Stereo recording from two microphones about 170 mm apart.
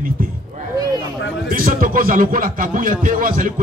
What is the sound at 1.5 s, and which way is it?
Speech, 55° right (ahead or behind).